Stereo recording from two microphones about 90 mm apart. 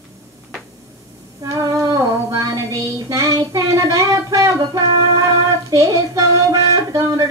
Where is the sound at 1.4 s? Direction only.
40° right (ahead or behind).